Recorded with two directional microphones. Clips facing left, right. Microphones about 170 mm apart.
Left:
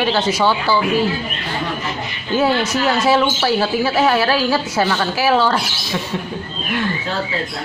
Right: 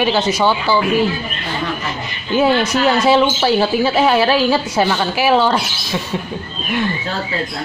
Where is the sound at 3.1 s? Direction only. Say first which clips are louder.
Right 1 dB; 20° right (ahead or behind).